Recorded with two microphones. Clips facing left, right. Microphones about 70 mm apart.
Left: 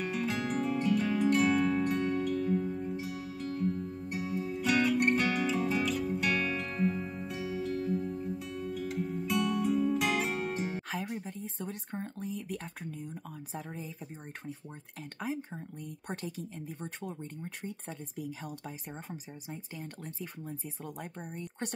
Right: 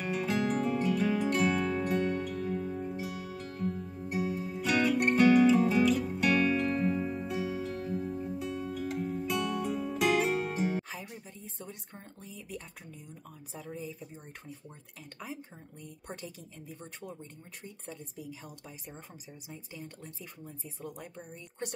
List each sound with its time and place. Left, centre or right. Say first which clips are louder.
0.0 s music: right 2 dB; centre
10.8 s a sound: left 4 dB; left
13.7 s speech: right 2 dB; left
15.1 s speech: left 7 dB; left
20.8 s speech: right 2 dB; left